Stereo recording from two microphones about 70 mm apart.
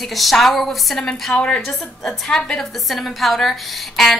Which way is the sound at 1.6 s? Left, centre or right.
Centre.